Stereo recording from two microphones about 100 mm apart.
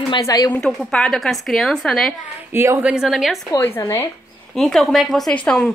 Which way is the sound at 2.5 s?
25° right (ahead or behind).